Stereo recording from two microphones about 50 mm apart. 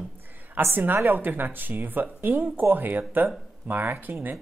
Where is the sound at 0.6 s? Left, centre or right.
Right.